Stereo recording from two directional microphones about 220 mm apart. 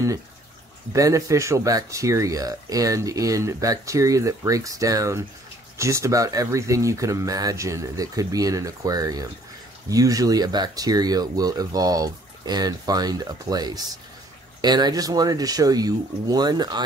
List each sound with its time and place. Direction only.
0.9 s speech: 15° right (ahead or behind)